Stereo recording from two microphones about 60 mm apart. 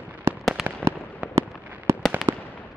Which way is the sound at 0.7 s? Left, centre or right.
Right.